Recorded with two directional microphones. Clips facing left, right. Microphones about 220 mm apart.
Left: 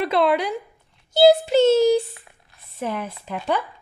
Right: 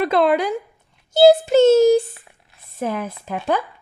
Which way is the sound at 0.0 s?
45° right (ahead or behind).